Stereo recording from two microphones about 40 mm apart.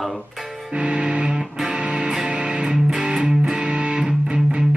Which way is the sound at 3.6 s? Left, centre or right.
Right.